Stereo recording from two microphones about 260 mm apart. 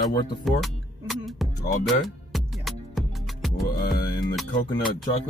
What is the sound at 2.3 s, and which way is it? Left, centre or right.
Music, centre.